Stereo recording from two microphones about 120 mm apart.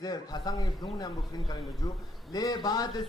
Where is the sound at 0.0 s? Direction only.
35° left (ahead or behind).